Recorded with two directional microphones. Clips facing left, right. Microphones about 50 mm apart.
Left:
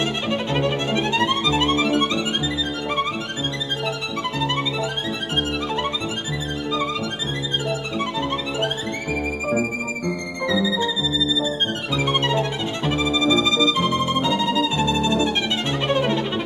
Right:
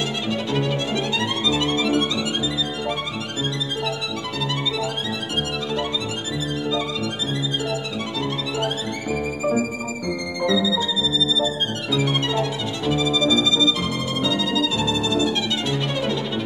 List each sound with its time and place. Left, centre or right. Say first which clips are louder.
0.3 s violin: even; left
10.4 s music: even; left
11.9 s music: left 1 dB; left
15.7 s violin: left 6 dB; left